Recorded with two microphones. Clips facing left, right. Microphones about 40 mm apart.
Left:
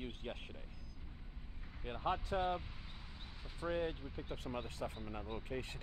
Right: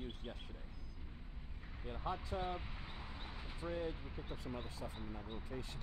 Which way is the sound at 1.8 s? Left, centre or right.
Left.